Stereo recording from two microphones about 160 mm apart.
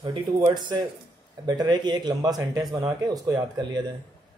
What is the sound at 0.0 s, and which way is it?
Speech, 30° right (ahead or behind).